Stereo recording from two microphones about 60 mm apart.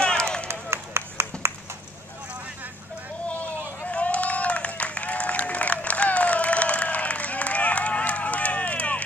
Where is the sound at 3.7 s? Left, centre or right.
Left.